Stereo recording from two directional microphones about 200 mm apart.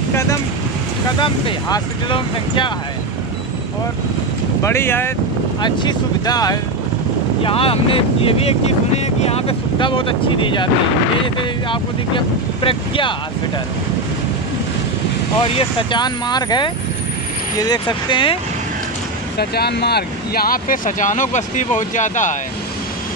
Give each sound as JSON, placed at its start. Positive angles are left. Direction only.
{"t": 1.2, "sound": "speech", "side_deg": 25}
{"t": 4.6, "sound": "speech", "side_deg": 10}
{"t": 5.6, "sound": "speech", "side_deg": 20}
{"t": 12.6, "sound": "speech", "side_deg": 25}
{"t": 15.4, "sound": "speech", "side_deg": 25}
{"t": 19.3, "sound": "speech", "side_deg": 55}